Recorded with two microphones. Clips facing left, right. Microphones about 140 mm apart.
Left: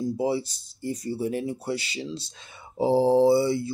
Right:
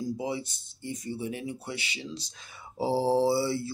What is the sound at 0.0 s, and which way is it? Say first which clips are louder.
Speech: left 6 dB; 30° left (ahead or behind).